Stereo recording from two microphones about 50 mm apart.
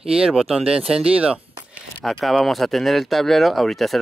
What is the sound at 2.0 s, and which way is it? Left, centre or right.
Speech, centre.